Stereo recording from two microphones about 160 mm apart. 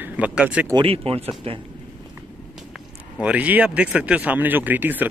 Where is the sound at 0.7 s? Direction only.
35° right (ahead or behind).